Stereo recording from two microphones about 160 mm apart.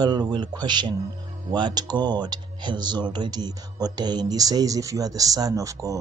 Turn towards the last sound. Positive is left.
turn(degrees=-20)  # may be behind; listen again after turning